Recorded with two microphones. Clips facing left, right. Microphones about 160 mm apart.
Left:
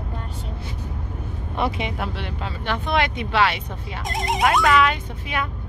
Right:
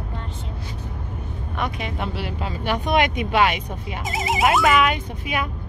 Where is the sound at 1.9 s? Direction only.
Centre (ahead or behind).